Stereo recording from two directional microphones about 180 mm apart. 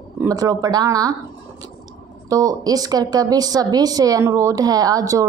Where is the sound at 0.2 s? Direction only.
20° right (ahead or behind).